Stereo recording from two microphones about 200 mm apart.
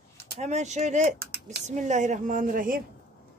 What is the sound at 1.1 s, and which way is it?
Speech, 50° right (ahead or behind).